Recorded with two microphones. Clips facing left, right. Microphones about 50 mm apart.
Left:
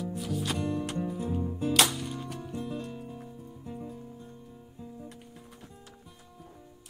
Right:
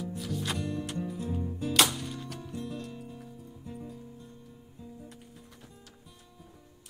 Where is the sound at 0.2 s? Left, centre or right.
Centre.